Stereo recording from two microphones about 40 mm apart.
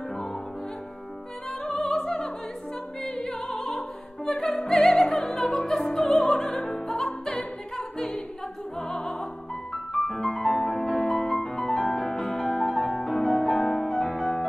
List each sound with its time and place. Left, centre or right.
1.6 s music: left
1.9 s music: centre
5.4 s opera: centre
6.1 s music: centre